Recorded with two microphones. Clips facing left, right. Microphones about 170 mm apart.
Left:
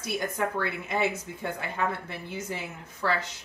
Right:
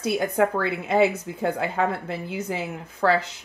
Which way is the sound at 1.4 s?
80° right.